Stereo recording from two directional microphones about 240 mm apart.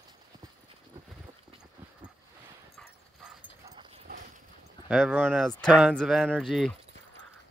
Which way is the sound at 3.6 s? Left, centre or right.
Centre.